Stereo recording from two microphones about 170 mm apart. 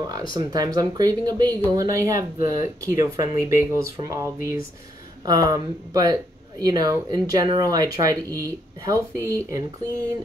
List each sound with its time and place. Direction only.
0.0 s speech: 25° right (ahead or behind)